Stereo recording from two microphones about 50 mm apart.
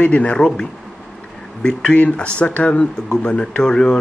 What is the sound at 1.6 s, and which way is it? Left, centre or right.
Speech, centre.